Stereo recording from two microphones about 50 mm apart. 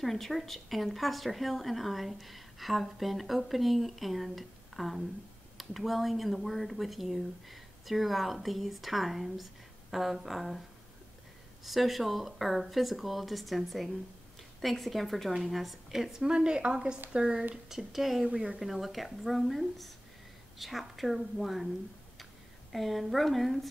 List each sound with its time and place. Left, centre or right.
0.0 s speech: centre
11.6 s speech: centre
17.6 s speech: centre
18.3 s speech: centre
18.6 s speech: centre
22.7 s speech: centre